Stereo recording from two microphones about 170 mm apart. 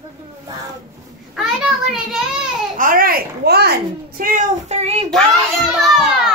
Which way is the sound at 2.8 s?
55° right (ahead or behind).